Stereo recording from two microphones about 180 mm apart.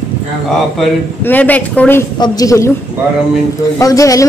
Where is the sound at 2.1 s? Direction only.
20° left (ahead or behind).